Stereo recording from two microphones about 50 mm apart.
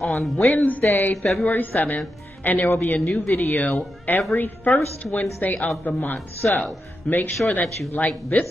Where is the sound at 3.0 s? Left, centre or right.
Centre.